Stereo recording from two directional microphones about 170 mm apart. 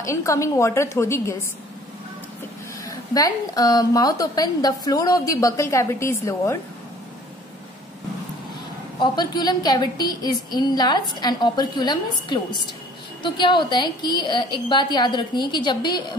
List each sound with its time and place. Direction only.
0.0 s a woman's voice: 15° left (ahead or behind)
2.9 s a woman's voice: 20° left (ahead or behind)
9.0 s a woman's voice: 25° left (ahead or behind)